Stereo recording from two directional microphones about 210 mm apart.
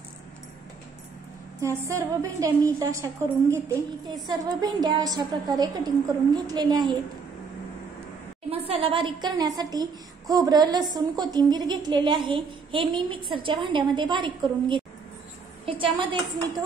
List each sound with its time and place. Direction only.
1.9 s a woman's voice: 15° right (ahead or behind)
8.5 s a woman's voice: 30° right (ahead or behind)